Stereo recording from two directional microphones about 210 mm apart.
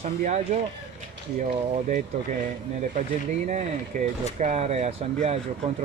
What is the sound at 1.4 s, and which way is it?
Speech, 35° right (ahead or behind).